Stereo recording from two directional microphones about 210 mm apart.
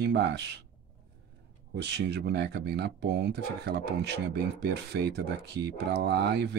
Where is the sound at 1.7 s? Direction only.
50° right (ahead or behind).